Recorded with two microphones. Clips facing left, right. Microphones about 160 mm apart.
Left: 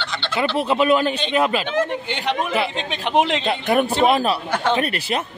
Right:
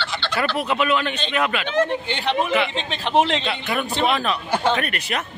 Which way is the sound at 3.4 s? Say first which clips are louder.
Left 6 dB; 45° left (ahead or behind).